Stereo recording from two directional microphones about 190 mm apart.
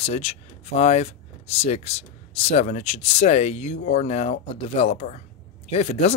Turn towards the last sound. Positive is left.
turn(degrees=35)  # may be behind; listen again after turning